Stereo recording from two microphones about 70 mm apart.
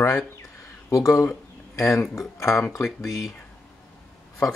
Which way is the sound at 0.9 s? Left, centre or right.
Left.